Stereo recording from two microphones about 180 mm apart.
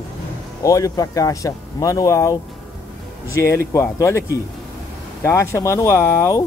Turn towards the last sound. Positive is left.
turn(degrees=15)  # may be behind; listen again after turning